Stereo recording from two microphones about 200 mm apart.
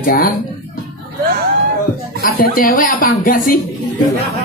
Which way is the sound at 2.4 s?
45° left (ahead or behind).